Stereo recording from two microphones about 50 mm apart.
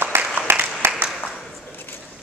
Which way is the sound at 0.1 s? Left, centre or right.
Right.